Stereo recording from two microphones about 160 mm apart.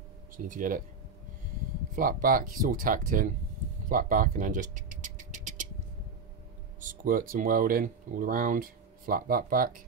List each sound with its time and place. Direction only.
0.5 s speech: 55° right (ahead or behind)
2.0 s speech: 60° right (ahead or behind)
3.9 s a sound: 60° right (ahead or behind)
6.8 s speech: 60° right (ahead or behind)